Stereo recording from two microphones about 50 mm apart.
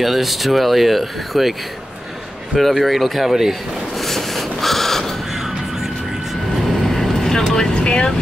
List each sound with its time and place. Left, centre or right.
0.0 s speech: centre
2.5 s speech: centre
4.0 s snort: centre
6.5 s vehicle: centre
7.5 s speech: centre